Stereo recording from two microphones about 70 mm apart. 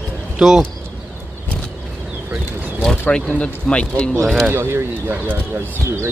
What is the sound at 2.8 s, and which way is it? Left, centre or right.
Speech, centre.